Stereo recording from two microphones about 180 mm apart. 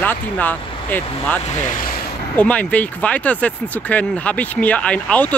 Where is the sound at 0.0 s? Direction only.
10° left (ahead or behind).